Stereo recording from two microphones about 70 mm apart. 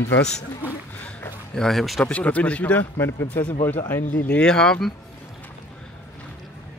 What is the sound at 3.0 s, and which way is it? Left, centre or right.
Speech, left.